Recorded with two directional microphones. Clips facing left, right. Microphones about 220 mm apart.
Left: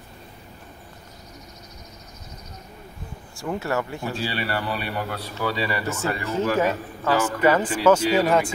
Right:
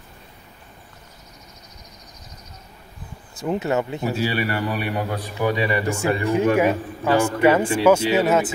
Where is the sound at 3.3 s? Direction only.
20° right (ahead or behind).